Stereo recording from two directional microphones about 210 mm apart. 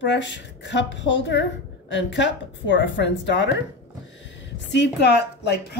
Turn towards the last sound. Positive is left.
turn(degrees=50)  # may be behind; listen again after turning